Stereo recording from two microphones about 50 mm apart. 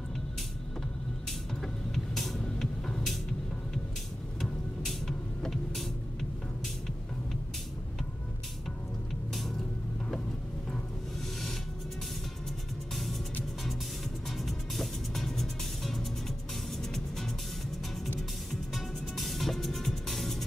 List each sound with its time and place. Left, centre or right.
2.1 s music: centre
4.4 s music: centre
14.4 s music: centre
18.5 s music: centre